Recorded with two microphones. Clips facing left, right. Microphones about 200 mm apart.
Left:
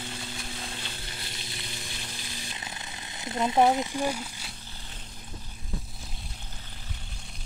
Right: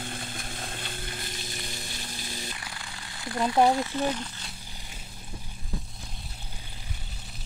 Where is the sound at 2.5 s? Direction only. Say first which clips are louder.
Left 1 dB; 20° left (ahead or behind).